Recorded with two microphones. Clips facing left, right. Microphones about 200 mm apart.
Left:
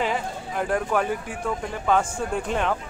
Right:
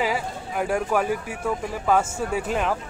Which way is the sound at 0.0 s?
5° right (ahead or behind).